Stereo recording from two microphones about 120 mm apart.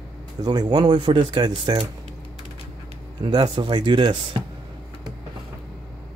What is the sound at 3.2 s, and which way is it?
Speech, 35° right (ahead or behind).